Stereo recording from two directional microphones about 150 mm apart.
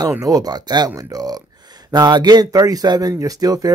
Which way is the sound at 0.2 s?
25° right (ahead or behind).